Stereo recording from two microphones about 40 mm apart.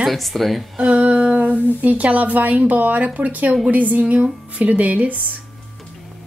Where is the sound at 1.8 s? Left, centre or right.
Right.